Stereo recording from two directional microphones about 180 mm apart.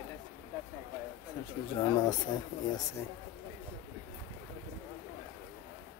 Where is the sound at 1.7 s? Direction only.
25° left (ahead or behind).